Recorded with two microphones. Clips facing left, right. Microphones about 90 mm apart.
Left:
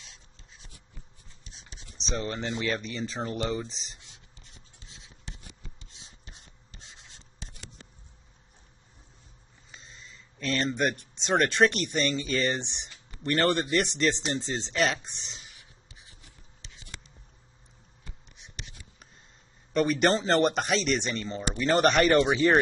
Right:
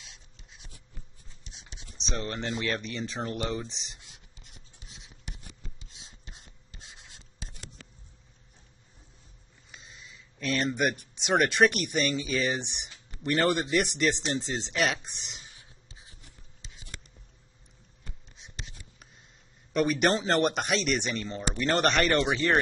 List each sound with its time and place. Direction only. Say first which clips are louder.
1.6 s typing: even; centre (ahead or behind)
2.6 s speech: left 1 dB; centre (ahead or behind)
4.8 s a sound: right 1 dB; 15° right (ahead or behind)
5.9 s writing: right 1 dB; 20° right (ahead or behind)
9.7 s speech: even; 5° right (ahead or behind)
19.7 s speech: left 1 dB; centre (ahead or behind)